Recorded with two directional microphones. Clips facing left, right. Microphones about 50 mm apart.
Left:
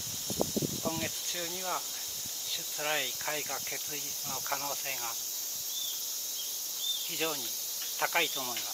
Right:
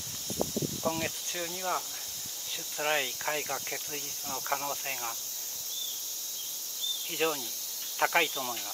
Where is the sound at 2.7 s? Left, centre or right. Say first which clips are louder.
Right 4 dB; centre.